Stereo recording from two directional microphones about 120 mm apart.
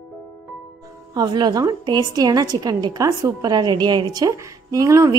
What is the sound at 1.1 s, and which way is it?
A woman's voice, 35° right (ahead or behind).